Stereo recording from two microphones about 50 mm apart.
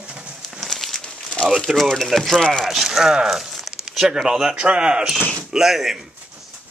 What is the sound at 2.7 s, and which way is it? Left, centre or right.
Speech, centre.